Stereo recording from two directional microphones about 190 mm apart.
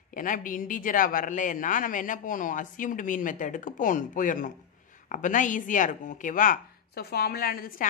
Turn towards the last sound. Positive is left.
turn(degrees=50)  # may be behind; listen again after turning